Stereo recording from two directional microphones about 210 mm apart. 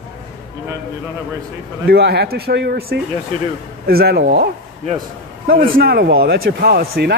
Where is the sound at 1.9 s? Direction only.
50° right (ahead or behind).